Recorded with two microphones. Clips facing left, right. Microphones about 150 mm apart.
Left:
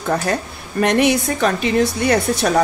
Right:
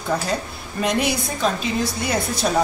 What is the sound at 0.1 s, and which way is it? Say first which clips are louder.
A woman's voice: left 3 dB; 60° left (ahead or behind).